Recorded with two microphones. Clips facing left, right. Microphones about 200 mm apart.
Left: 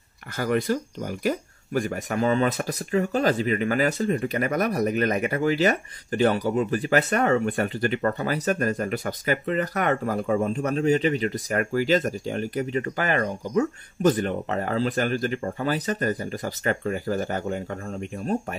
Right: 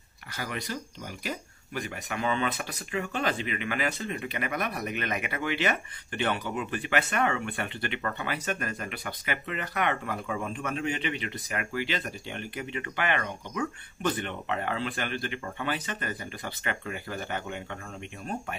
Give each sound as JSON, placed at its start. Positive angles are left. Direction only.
{"t": 0.4, "sound": "speech", "side_deg": 50}